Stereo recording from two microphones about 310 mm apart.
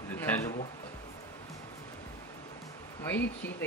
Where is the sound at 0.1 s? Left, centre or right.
Centre.